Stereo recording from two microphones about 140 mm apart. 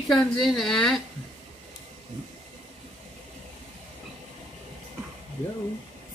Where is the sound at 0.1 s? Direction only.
Centre (ahead or behind).